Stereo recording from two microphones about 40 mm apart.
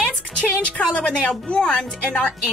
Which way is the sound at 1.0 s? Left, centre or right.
Centre.